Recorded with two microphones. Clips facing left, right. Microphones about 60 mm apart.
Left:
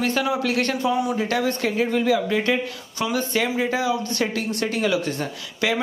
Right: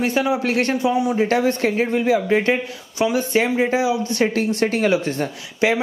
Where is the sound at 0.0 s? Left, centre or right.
Right.